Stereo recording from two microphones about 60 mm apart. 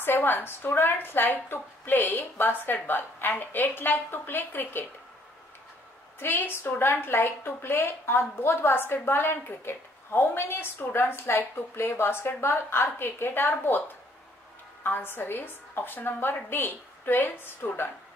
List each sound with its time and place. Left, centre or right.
0.0 s a woman's voice: left
6.1 s a woman's voice: left